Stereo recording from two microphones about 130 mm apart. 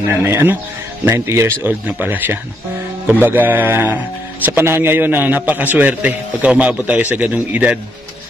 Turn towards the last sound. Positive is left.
turn(degrees=-10)  # may be behind; listen again after turning